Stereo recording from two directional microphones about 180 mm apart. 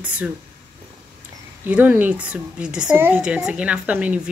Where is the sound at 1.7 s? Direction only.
10° right (ahead or behind).